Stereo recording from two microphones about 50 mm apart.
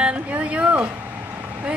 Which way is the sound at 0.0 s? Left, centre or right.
Right.